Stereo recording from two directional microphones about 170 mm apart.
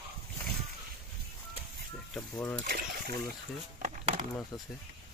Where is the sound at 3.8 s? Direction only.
50° right (ahead or behind).